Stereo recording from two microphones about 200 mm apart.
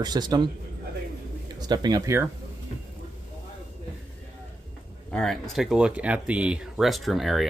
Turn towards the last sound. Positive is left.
turn(degrees=0)  # may be behind; listen again after turning